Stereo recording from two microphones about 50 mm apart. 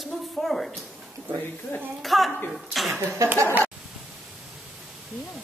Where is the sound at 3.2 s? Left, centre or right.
Right.